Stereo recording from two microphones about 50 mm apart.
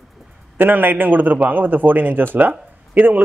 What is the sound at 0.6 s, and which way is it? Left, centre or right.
Speech, right.